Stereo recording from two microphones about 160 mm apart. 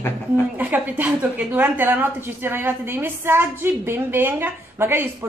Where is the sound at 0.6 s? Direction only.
10° right (ahead or behind).